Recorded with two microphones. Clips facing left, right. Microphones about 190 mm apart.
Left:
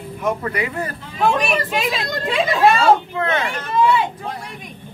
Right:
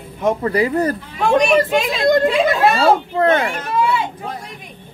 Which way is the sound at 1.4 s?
Centre (ahead or behind).